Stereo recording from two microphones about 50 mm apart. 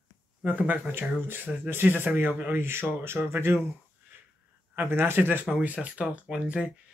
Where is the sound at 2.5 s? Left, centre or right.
Right.